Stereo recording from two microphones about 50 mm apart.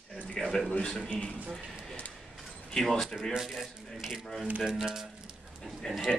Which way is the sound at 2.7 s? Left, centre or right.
Centre.